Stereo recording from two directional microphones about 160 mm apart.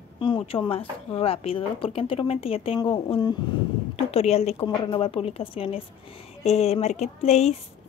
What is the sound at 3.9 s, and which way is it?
A woman's voice, 40° left (ahead or behind).